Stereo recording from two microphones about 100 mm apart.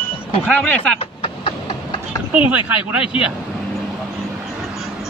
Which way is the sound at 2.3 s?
15° right (ahead or behind).